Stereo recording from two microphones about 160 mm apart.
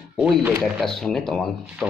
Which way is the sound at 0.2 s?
5° right (ahead or behind).